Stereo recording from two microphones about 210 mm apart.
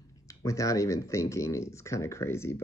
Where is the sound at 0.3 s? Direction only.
15° left (ahead or behind).